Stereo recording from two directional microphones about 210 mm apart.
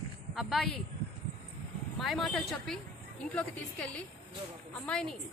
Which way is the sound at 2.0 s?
Centre (ahead or behind).